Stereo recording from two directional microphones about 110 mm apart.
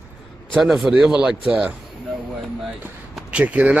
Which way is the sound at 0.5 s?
5° right (ahead or behind).